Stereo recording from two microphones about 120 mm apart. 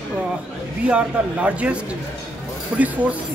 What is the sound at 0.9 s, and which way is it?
A man's voice, 10° right (ahead or behind).